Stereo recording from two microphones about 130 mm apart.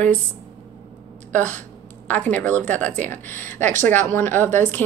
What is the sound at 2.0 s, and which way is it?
A woman's voice, 10° left (ahead or behind).